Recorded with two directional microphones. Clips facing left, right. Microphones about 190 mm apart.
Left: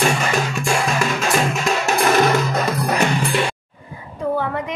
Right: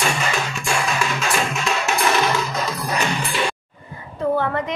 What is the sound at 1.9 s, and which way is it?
Music, 45° left (ahead or behind).